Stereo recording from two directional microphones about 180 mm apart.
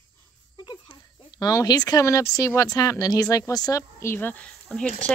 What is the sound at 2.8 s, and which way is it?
Speech, 20° left (ahead or behind).